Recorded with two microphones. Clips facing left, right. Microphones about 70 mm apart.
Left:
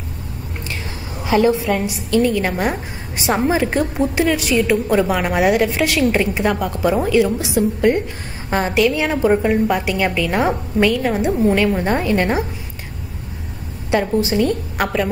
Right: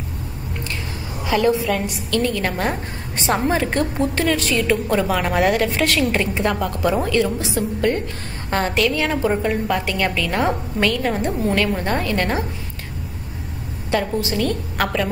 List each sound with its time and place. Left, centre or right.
1.2 s a woman's voice: left
13.8 s a woman's voice: centre